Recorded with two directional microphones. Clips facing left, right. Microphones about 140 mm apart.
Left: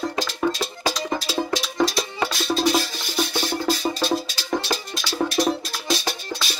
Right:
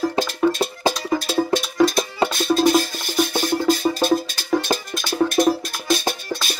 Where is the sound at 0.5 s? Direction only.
50° right (ahead or behind).